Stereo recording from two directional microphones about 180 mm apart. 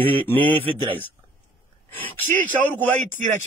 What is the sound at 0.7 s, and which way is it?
Speech, 25° right (ahead or behind).